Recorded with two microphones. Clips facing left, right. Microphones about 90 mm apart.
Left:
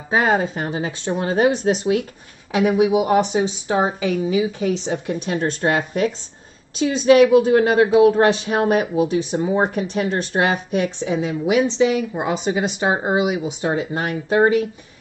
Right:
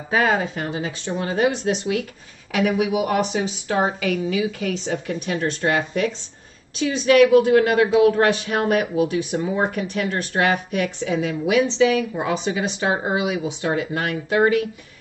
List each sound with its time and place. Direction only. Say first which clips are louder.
0.1 s a woman's voice: left 2 dB; 25° left (ahead or behind)
2.5 s a woman's voice: left 4 dB; 25° left (ahead or behind)